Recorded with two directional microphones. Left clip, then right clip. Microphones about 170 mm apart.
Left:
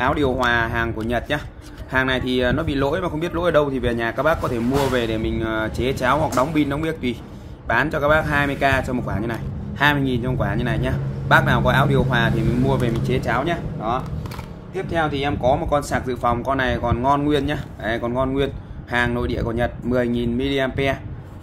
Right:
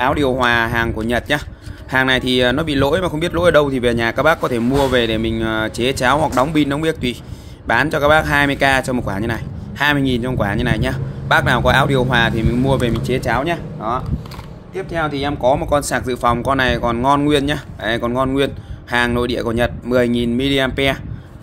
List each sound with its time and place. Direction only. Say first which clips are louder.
0.0 s speech: right 4 dB; 50° right (ahead or behind)
14.8 s speech: right 1 dB; 30° right (ahead or behind); by 21.0 s 55° right (ahead or behind)